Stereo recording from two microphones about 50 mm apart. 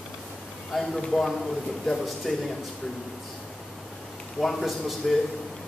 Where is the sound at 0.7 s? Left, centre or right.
Centre.